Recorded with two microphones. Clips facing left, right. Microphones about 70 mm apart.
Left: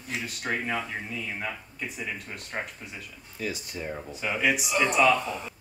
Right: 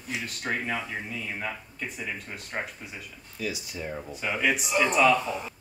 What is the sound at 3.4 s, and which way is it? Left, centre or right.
Speech, left.